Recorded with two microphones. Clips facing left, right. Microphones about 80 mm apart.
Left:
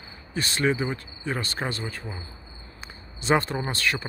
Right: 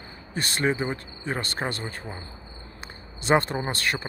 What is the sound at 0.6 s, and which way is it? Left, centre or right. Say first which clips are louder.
Cricket: even; right.